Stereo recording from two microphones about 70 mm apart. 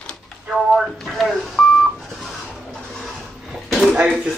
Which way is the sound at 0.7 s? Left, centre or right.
Centre.